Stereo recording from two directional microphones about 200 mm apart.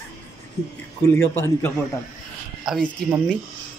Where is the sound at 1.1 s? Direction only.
10° left (ahead or behind).